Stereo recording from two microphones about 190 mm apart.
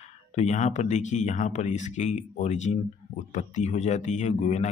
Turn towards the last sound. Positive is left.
turn(degrees=40)  # may be behind; listen again after turning